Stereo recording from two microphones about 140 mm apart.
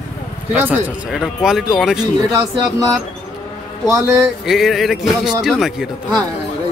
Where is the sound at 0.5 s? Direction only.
10° right (ahead or behind).